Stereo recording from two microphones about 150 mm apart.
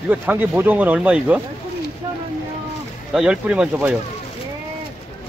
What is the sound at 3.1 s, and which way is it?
Speech, 5° right (ahead or behind).